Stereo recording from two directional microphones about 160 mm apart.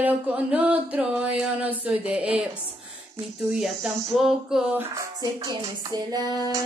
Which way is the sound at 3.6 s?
Centre (ahead or behind).